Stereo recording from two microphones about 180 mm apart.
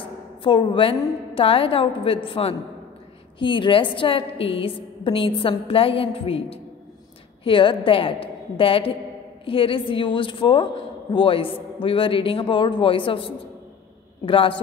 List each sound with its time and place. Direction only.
0.4 s a woman's voice: 25° left (ahead or behind)